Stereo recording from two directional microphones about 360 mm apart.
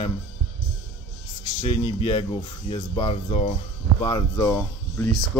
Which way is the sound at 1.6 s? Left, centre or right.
Centre.